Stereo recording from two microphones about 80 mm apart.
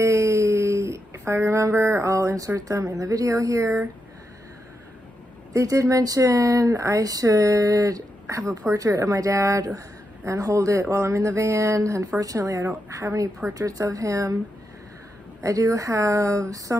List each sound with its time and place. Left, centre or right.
0.0 s a sound: right
5.5 s speech: right
15.4 s speech: right